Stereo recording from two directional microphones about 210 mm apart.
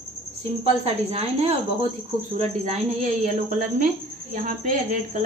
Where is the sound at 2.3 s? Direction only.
30° right (ahead or behind).